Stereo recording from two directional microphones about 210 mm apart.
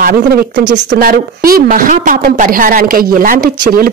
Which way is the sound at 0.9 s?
45° right (ahead or behind).